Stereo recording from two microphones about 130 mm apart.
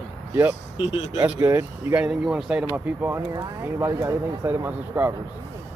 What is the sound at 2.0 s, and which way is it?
Speech, 5° right (ahead or behind).